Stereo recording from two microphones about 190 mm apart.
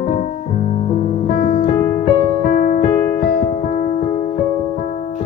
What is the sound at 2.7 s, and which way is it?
Music, 50° left (ahead or behind).